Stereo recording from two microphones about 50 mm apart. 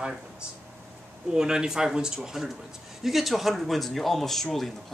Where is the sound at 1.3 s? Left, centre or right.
Centre.